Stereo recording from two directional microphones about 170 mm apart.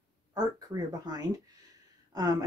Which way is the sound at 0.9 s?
20° right (ahead or behind).